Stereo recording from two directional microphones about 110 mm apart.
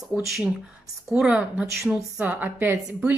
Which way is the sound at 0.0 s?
Centre (ahead or behind).